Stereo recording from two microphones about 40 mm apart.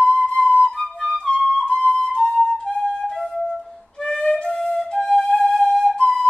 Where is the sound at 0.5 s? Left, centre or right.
Left.